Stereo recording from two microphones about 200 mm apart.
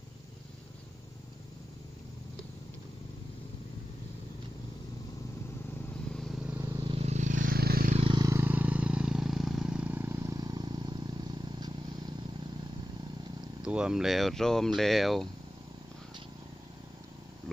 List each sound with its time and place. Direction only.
6.1 s vehicle: centre (ahead or behind)
6.5 s vehicle: 10° right (ahead or behind)
6.8 s vehicle: 25° right (ahead or behind); by 7.9 s 50° right (ahead or behind)
7.9 s vehicle: 25° right (ahead or behind)
13.6 s speech: 5° right (ahead or behind)